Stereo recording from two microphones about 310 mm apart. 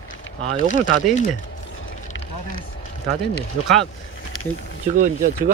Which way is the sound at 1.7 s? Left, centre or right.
Left.